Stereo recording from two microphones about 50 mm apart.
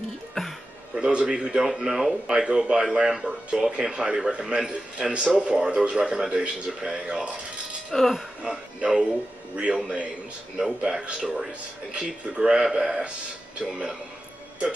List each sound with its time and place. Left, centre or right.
0.3 s a sound: centre
0.9 s a man's voice: centre
2.3 s a man's voice: centre
7.9 s speech: centre
8.4 s a man's voice: centre